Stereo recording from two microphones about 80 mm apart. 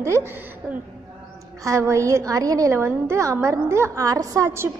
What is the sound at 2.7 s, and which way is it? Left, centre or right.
A woman's voice, right.